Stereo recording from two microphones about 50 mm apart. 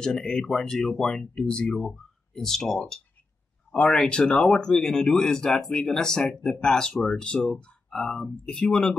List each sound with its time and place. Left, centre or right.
0.0 s speech: centre
3.7 s speech: left
4.0 s speech: centre
8.5 s speech: centre